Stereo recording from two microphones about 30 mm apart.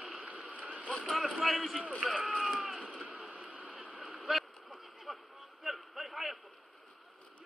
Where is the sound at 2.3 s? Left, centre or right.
Centre.